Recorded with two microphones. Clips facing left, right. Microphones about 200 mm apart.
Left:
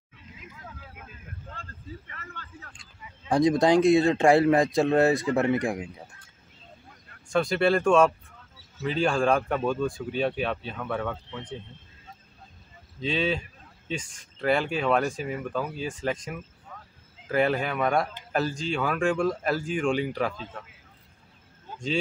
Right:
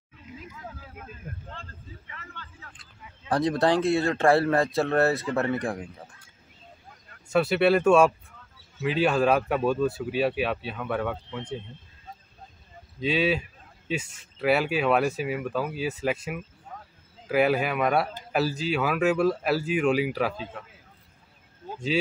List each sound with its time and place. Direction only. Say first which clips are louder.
1.5 s vehicle: left 2 dB; 45° left (ahead or behind)
2.8 s speech: left 1 dB; 15° left (ahead or behind)
7.2 s speech: right 2 dB; 5° right (ahead or behind)
13.0 s speech: right 2 dB; 5° right (ahead or behind)